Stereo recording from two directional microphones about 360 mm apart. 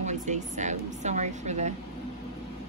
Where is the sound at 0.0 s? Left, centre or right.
Centre.